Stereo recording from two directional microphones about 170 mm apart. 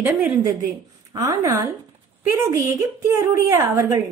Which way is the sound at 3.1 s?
15° right (ahead or behind).